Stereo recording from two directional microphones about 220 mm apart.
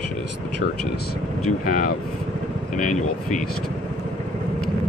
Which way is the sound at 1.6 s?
40° left (ahead or behind).